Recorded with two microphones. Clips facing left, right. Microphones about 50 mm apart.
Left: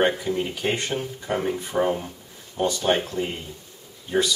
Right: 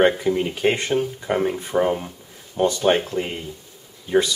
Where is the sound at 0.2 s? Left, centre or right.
Centre.